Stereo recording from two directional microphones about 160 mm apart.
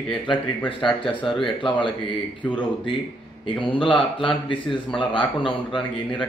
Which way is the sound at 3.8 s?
30° left (ahead or behind).